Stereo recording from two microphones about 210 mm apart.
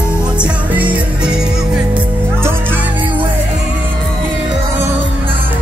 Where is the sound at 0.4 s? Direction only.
5° right (ahead or behind).